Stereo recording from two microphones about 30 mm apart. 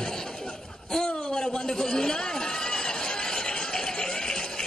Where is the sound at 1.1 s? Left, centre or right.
Left.